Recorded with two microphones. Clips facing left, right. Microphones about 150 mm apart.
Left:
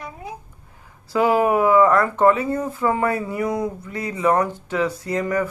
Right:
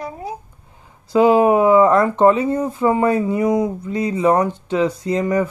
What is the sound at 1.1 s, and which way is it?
Speech, 20° right (ahead or behind).